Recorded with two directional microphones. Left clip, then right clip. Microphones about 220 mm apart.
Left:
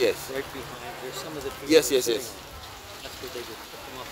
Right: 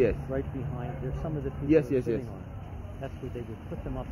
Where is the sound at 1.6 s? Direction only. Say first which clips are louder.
Left 5 dB; 15° left (ahead or behind).